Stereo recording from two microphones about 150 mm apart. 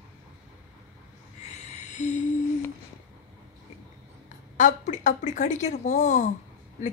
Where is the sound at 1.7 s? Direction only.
50° left (ahead or behind).